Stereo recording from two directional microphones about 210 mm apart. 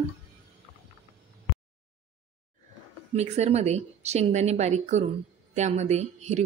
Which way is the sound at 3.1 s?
30° right (ahead or behind).